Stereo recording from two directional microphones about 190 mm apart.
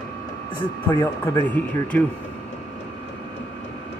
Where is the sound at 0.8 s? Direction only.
15° left (ahead or behind).